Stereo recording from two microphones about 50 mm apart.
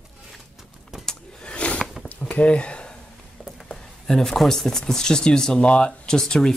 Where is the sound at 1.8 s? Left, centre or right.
Centre.